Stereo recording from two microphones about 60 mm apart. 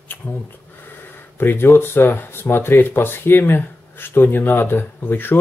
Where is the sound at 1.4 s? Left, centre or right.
Left.